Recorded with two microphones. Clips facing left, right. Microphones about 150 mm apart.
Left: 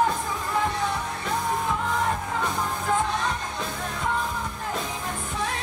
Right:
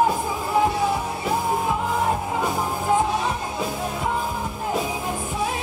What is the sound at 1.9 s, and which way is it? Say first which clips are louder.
Music: right 3 dB; 20° right (ahead or behind).